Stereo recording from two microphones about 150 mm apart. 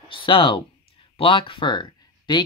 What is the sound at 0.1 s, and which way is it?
Speech, 35° left (ahead or behind).